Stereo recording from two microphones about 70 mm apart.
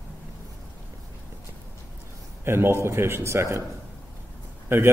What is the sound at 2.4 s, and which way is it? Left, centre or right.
A man's voice, right.